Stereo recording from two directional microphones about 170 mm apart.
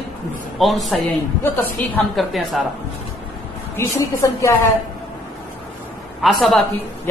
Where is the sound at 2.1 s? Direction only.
Centre (ahead or behind).